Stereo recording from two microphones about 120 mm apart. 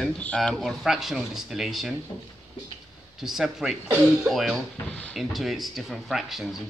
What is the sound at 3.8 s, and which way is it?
Speech, 15° right (ahead or behind).